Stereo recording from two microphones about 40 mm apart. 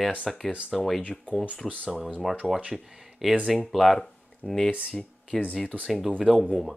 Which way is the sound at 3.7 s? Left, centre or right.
Centre.